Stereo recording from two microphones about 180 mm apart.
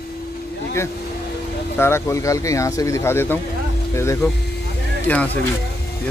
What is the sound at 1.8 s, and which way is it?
Speech, 15° left (ahead or behind).